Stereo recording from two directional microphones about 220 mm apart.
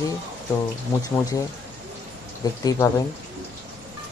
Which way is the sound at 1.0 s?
15° left (ahead or behind).